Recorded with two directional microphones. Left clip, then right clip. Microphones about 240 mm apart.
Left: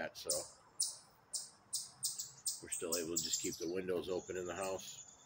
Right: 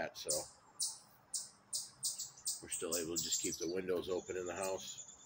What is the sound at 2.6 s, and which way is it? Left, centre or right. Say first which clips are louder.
Speech: even; centre.